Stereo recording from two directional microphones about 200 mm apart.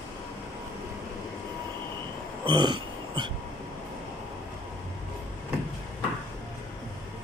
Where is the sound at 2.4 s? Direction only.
20° right (ahead or behind).